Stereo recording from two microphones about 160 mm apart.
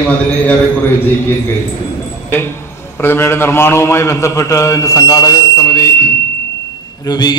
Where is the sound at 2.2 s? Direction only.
15° left (ahead or behind).